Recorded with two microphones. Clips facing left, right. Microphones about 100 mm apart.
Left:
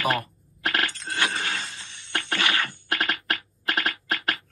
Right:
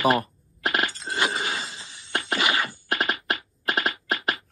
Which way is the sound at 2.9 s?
25° right (ahead or behind).